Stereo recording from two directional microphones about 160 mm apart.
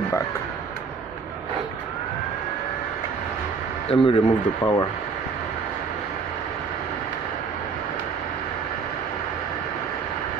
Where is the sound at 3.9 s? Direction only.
35° left (ahead or behind).